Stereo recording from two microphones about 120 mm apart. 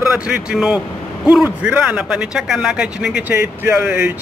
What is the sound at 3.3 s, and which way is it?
Speech, 20° right (ahead or behind).